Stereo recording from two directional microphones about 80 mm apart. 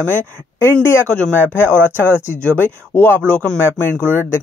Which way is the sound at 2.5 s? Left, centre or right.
Left.